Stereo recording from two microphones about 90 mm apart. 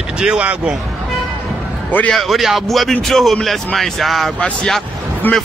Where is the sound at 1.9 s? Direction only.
20° left (ahead or behind).